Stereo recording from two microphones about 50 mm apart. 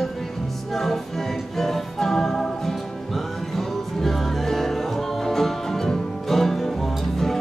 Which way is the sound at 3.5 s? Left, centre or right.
Centre.